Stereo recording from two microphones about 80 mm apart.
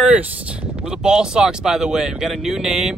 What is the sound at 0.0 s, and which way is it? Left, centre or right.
Speech, centre.